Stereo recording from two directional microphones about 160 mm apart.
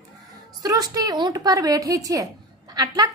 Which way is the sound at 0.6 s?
25° right (ahead or behind).